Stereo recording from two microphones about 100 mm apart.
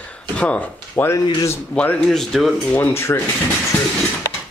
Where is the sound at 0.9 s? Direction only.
20° left (ahead or behind).